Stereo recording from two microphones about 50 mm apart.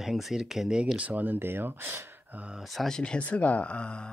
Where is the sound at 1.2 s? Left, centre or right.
Right.